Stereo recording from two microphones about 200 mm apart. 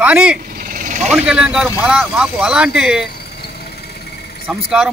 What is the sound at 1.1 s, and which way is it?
Speech, 5° right (ahead or behind).